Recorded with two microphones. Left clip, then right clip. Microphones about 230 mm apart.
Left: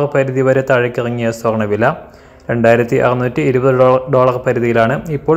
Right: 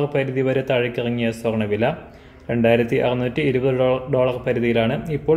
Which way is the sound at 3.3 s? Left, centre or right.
Left.